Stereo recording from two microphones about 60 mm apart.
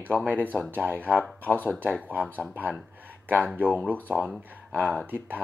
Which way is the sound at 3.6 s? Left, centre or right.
Right.